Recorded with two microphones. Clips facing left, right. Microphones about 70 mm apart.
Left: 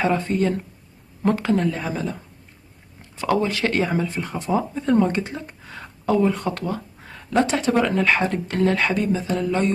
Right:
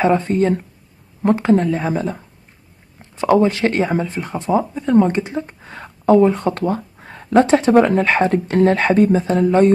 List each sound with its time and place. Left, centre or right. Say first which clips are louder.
0.0 s speech: right 5 dB; right
3.2 s speech: right 7 dB; right
5.6 s speech: right 3 dB; right